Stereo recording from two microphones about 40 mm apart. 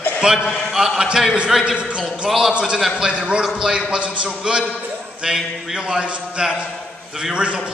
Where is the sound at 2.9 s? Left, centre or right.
Right.